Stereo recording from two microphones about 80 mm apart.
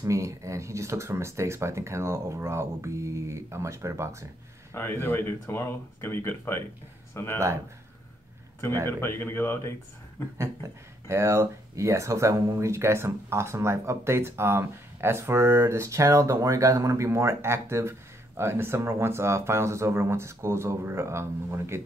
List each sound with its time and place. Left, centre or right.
0.0 s speech: right
4.7 s speech: left
8.8 s speech: left
10.3 s speech: right